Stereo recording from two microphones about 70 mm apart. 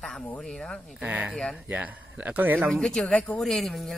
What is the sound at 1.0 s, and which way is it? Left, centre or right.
Speech, right.